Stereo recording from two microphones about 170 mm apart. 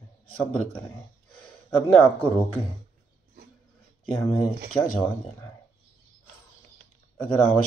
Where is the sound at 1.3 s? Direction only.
5° left (ahead or behind).